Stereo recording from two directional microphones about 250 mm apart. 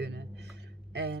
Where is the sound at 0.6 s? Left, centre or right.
Right.